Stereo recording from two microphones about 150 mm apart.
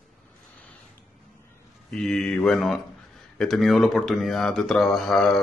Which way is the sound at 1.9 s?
5° left (ahead or behind).